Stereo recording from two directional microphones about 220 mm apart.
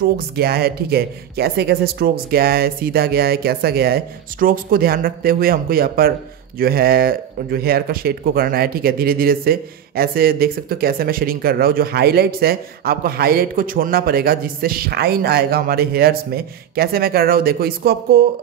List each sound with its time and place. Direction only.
0.0 s speech: 45° right (ahead or behind)